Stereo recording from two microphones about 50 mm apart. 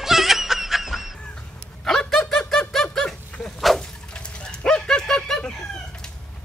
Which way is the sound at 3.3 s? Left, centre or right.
Left.